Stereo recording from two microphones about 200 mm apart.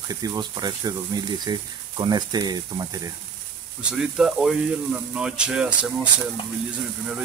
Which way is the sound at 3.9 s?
5° right (ahead or behind).